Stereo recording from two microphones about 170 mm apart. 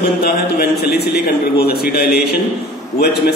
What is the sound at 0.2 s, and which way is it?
A man's voice, 70° left (ahead or behind).